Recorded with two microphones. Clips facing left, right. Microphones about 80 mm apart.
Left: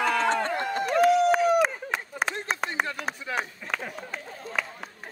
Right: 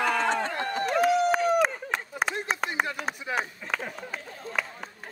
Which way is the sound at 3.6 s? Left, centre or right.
Centre.